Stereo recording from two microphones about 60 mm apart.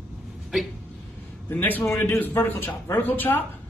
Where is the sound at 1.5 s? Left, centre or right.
Left.